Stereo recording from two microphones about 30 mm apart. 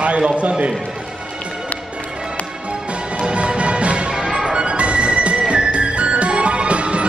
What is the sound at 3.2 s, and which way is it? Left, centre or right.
Music, right.